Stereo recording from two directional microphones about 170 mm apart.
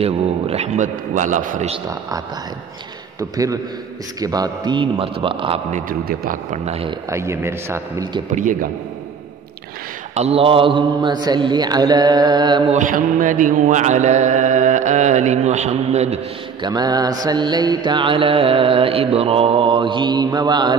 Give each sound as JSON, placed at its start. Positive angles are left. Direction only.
{"t": 0.0, "sound": "mantra", "side_deg": -35}
{"t": 1.9, "sound": "mantra", "side_deg": -20}
{"t": 5.2, "sound": "a man's voice", "side_deg": -30}
{"t": 5.7, "sound": "mantra", "side_deg": -60}
{"t": 7.1, "sound": "a man's voice", "side_deg": -15}
{"t": 8.3, "sound": "mantra", "side_deg": -50}
{"t": 10.1, "sound": "mantra", "side_deg": -35}
{"t": 12.7, "sound": "mantra", "side_deg": -50}
{"t": 16.6, "sound": "mantra", "side_deg": -25}